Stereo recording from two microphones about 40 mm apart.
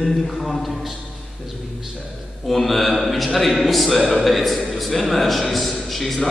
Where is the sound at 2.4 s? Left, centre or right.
Centre.